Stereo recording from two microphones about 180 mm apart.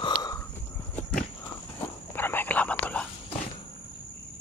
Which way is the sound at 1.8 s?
10° left (ahead or behind).